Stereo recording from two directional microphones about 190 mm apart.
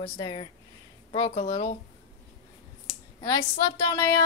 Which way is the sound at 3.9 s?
20° left (ahead or behind).